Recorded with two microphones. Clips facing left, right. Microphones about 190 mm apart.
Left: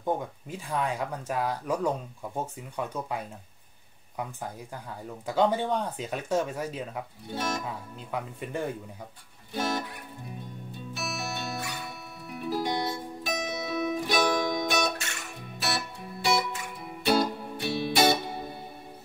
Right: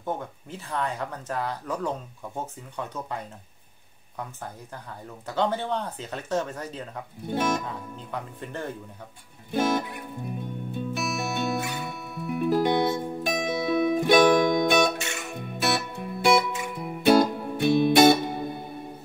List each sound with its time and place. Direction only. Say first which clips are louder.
0.0 s speech: left 2 dB; 10° left (ahead or behind)
5.2 s speech: left 2 dB; 10° left (ahead or behind)
7.2 s speech: right 7 dB; 55° right (ahead or behind)
7.6 s speech: right 2 dB; 10° left (ahead or behind)
9.5 s music: right 6 dB; 55° right (ahead or behind)